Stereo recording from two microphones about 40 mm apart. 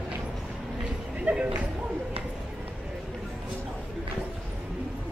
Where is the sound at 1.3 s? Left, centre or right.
Right.